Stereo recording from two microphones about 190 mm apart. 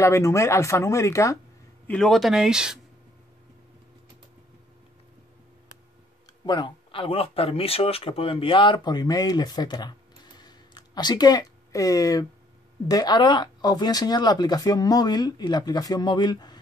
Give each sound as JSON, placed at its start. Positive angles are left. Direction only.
{"t": 0.0, "sound": "speech", "side_deg": 15}
{"t": 1.9, "sound": "speech", "side_deg": 5}
{"t": 6.4, "sound": "speech", "side_deg": 25}